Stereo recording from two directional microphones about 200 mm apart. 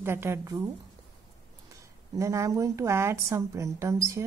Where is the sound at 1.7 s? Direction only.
15° right (ahead or behind).